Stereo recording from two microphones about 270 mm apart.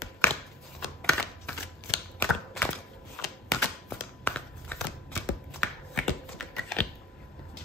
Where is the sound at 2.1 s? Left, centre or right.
Centre.